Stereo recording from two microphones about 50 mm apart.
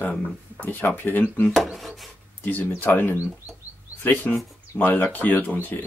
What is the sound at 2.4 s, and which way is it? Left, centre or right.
Speech, left.